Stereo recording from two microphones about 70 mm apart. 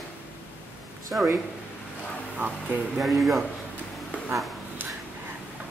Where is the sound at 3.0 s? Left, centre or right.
Centre.